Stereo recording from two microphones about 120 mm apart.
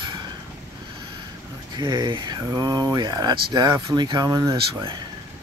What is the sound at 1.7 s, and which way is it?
Speech, 40° right (ahead or behind).